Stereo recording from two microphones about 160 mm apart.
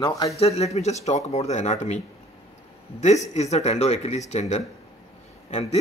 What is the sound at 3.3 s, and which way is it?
Speech, 45° left (ahead or behind).